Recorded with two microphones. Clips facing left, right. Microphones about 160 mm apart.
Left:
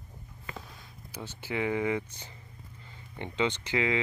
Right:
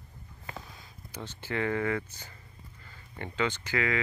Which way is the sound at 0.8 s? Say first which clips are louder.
Even; 10° left (ahead or behind).